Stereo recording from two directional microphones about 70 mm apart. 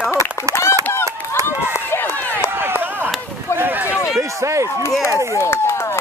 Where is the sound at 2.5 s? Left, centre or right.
Right.